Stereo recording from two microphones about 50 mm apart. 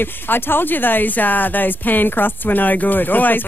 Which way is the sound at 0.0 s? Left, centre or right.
Left.